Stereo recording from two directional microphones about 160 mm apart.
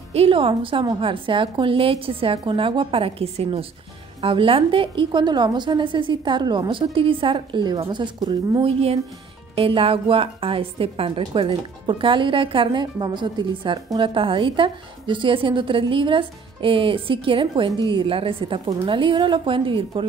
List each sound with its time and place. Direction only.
0.1 s a woman's voice: 35° right (ahead or behind)
8.6 s a woman's voice: 40° right (ahead or behind)